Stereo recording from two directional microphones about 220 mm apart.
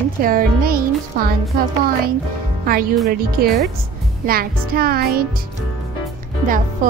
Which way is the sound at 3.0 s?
45° right (ahead or behind).